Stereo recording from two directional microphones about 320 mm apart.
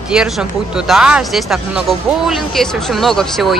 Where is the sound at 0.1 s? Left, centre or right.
Centre.